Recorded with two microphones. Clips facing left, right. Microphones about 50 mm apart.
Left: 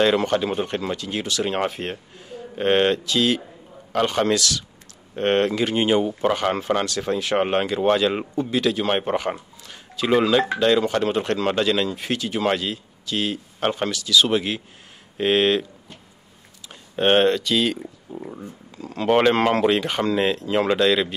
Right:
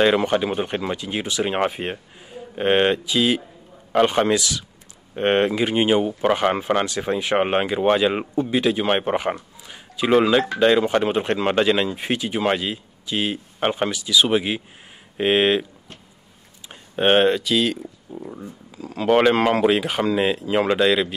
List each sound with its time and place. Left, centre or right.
0.0 s speech: centre
16.6 s speech: centre